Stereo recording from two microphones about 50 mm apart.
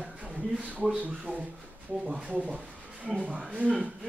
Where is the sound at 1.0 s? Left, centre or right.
Right.